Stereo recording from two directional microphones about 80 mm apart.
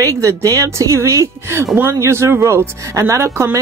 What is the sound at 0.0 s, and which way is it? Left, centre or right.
Speech, right.